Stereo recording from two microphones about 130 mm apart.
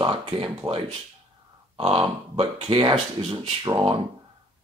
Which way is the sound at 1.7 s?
45° right (ahead or behind).